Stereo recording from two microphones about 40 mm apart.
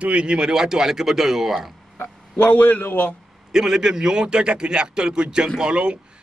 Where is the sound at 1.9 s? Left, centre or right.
Left.